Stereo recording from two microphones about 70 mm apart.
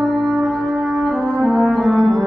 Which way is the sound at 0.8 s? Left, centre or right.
Centre.